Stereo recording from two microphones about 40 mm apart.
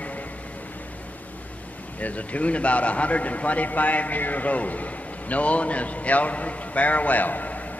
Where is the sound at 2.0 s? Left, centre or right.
Left.